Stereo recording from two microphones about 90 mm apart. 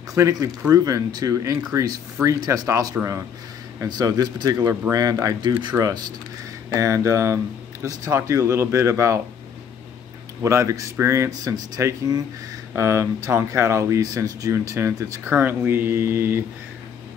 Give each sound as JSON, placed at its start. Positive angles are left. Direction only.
{"t": 0.1, "sound": "speech", "side_deg": -40}
{"t": 5.4, "sound": "speech", "side_deg": -55}
{"t": 5.8, "sound": "speech", "side_deg": -40}
{"t": 10.4, "sound": "speech", "side_deg": -35}
{"t": 12.7, "sound": "speech", "side_deg": -30}